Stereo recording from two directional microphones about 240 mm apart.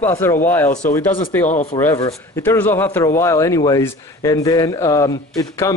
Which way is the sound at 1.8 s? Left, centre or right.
Centre.